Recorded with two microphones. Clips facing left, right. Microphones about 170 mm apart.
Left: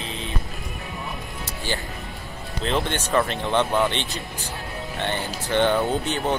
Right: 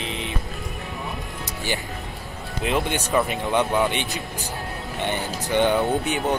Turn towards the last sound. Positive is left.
turn(degrees=-10)  # may be behind; listen again after turning